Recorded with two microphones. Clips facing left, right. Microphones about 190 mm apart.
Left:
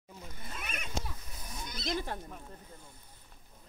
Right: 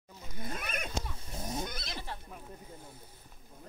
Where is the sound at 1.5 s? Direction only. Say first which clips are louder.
Right 6 dB; 55° right (ahead or behind).